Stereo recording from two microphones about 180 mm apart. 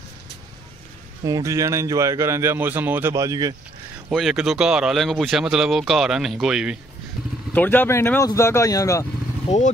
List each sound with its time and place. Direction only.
1.2 s speech: 20° right (ahead or behind)
4.1 s speech: centre (ahead or behind)
7.5 s speech: 10° left (ahead or behind)
9.5 s speech: 40° left (ahead or behind)